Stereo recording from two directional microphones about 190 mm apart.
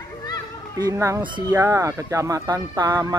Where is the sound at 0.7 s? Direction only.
15° right (ahead or behind).